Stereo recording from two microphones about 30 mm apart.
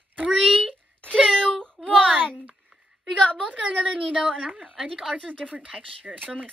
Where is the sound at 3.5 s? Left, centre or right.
Right.